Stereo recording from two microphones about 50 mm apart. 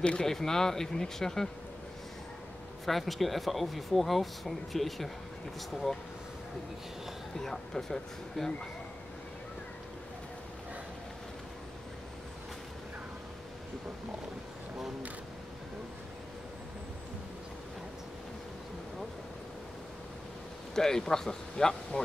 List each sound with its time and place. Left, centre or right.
0.0 s speech: left
0.3 s speech: centre
2.8 s speech: centre
7.3 s speech: centre
20.7 s speech: centre